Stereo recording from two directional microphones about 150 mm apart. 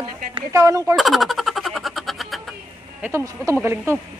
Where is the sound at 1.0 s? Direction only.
Centre (ahead or behind).